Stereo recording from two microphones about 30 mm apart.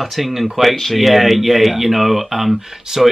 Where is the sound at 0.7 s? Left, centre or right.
Centre.